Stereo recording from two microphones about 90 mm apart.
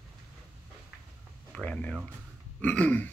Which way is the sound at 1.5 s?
15° left (ahead or behind).